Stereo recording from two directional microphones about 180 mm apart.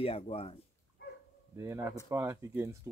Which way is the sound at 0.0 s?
30° left (ahead or behind).